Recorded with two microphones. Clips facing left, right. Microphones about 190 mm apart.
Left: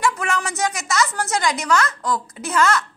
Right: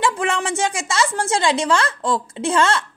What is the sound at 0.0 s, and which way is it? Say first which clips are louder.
A woman's voice: right 2 dB; 30° right (ahead or behind).